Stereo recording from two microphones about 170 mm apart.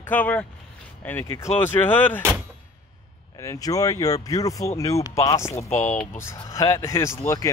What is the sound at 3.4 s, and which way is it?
Speech, 20° left (ahead or behind).